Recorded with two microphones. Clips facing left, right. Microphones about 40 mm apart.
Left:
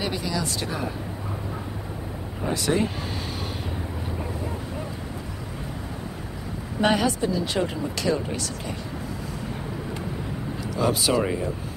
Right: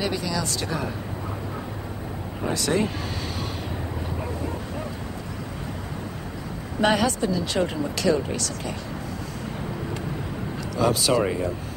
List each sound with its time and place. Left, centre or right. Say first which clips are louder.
0.0 s speech: right 1 dB; left
2.5 s speech: even; centre
6.8 s speech: right 1 dB; centre
10.8 s speech: right 1 dB; centre